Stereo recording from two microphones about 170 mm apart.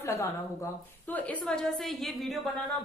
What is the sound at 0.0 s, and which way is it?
A woman's voice, 15° left (ahead or behind).